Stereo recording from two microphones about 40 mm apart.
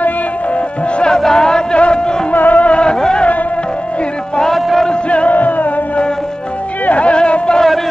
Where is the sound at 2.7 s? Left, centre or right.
Left.